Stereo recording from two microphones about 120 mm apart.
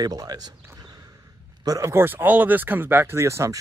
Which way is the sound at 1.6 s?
25° right (ahead or behind).